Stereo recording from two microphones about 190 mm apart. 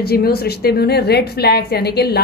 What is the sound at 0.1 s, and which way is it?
A woman's voice, 55° left (ahead or behind).